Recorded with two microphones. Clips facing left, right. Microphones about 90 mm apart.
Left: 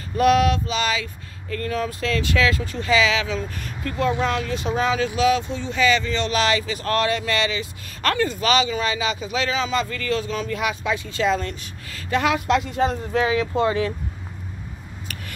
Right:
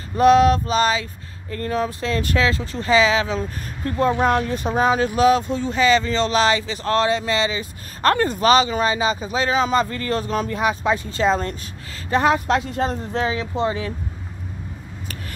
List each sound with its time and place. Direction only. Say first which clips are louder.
0.2 s speech: right 4 dB; 30° right (ahead or behind)